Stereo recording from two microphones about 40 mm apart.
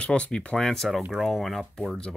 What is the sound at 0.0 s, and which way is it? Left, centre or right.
Speech, left.